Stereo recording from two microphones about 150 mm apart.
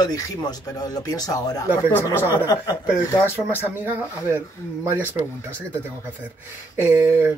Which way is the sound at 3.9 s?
15° right (ahead or behind).